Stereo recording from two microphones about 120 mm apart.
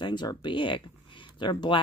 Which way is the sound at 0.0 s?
40° left (ahead or behind).